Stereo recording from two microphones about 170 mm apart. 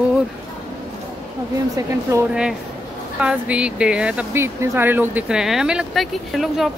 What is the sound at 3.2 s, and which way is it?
Speech, 5° right (ahead or behind).